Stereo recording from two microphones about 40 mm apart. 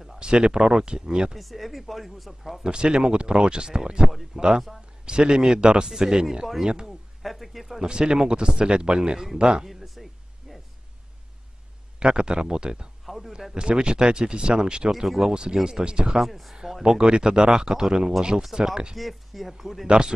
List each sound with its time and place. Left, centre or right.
0.2 s speech: right
1.3 s speech: centre
2.6 s speech: right
6.9 s a man's voice: centre
7.8 s speech: centre
9.7 s a sound: centre
12.0 s speech: right
13.0 s a sound: centre
13.6 s speech: right
14.9 s speech: centre
16.2 s speech: centre
16.8 s speech: centre